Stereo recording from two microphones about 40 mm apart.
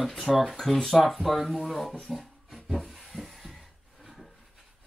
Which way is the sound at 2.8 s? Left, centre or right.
Centre.